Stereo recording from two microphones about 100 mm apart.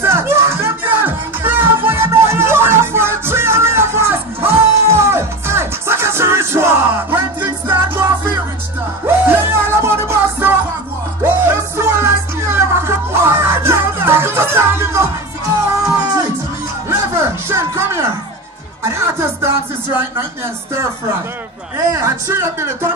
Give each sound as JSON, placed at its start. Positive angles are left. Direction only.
{"t": 0.0, "sound": "music", "side_deg": -25}
{"t": 9.0, "sound": "music", "side_deg": -25}
{"t": 16.9, "sound": "a sound", "side_deg": -25}
{"t": 21.9, "sound": "speech", "side_deg": -30}